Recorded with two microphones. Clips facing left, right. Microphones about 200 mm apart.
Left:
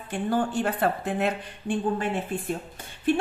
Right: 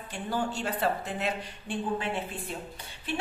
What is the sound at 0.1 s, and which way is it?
A woman's voice, 55° left (ahead or behind).